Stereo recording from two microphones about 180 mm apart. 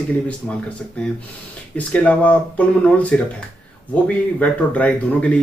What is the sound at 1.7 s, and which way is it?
Speech, 10° left (ahead or behind).